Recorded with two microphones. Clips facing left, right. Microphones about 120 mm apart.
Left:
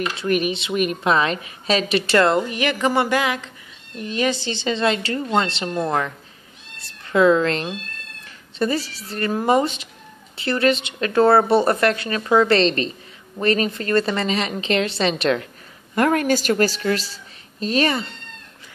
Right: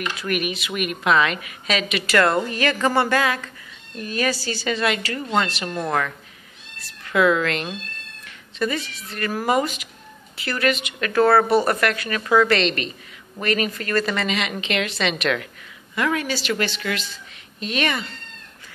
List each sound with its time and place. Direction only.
0.0 s speech: 30° left (ahead or behind)
15.9 s a woman's voice: 50° left (ahead or behind); by 18.1 s 30° left (ahead or behind)